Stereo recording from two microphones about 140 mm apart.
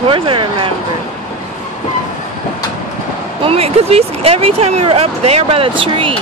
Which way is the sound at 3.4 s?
45° right (ahead or behind).